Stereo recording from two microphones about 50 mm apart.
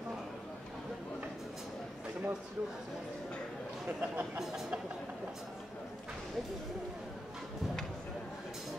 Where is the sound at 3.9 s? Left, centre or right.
Right.